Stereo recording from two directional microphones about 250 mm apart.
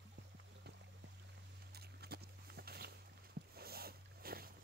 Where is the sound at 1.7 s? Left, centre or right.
Right.